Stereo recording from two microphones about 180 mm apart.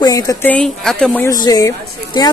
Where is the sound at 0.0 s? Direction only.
20° left (ahead or behind).